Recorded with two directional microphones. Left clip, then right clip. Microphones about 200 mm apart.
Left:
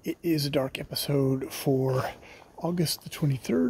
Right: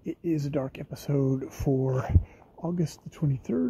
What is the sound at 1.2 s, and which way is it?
Speech, 5° left (ahead or behind).